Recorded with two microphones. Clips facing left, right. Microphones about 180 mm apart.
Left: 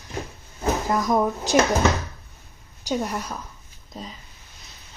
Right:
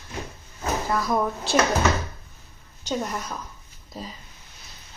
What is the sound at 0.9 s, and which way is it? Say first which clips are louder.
Speech: left 3 dB; 15° left (ahead or behind).